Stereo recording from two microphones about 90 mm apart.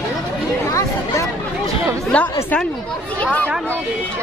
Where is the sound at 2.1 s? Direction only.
15° left (ahead or behind).